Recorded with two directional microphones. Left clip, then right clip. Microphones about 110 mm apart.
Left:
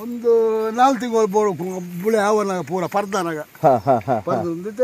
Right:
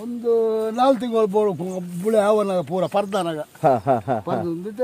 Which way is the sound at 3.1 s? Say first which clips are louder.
Left 1 dB; 20° right (ahead or behind).